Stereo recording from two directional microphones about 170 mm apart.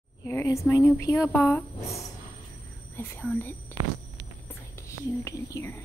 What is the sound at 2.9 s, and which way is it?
Speech, 10° left (ahead or behind).